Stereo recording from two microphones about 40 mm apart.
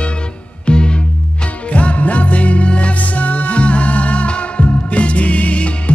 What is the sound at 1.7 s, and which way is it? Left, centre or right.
Music, left.